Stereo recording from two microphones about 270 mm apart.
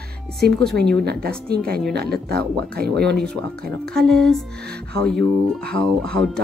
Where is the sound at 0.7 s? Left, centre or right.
Centre.